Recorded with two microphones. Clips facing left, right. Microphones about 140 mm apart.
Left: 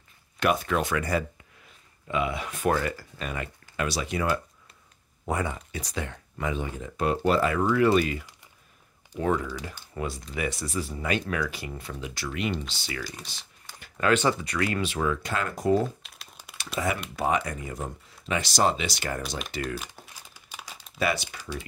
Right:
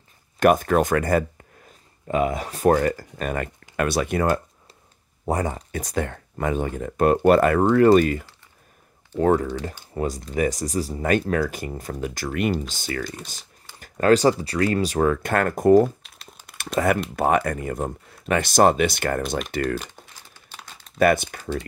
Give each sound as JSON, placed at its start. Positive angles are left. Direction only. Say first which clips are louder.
{"t": 0.4, "sound": "speech", "louder": "right 8 dB", "side_deg": -45}
{"t": 5.3, "sound": "speech", "louder": "right 5 dB", "side_deg": -40}
{"t": 16.0, "sound": "crumpling", "louder": "right 2 dB", "side_deg": 0}
{"t": 16.5, "sound": "speech", "louder": "right 8 dB", "side_deg": -50}
{"t": 20.3, "sound": "crumpling", "louder": "even", "side_deg": 10}
{"t": 21.0, "sound": "speech", "louder": "right 9 dB", "side_deg": -50}